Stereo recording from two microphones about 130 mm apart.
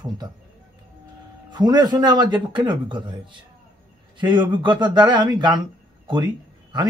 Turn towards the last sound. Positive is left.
turn(degrees=-35)  # may be behind; listen again after turning